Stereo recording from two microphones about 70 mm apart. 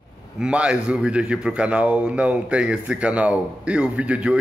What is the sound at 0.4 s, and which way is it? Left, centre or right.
A man's voice, centre.